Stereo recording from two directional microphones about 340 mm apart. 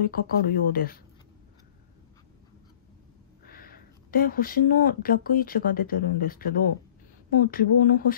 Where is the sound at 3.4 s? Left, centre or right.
Left.